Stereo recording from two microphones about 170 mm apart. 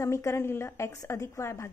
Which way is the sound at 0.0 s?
15° left (ahead or behind).